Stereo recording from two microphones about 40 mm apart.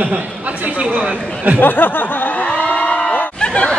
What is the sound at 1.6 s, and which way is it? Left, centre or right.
Snicker, left.